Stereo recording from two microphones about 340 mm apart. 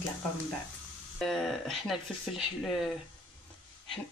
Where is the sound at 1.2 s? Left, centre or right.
Centre.